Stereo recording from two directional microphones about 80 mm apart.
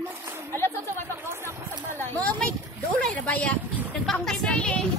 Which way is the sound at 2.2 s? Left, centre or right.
Centre.